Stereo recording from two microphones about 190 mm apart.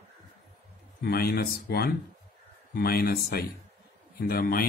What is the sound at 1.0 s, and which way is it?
Speech, 55° left (ahead or behind).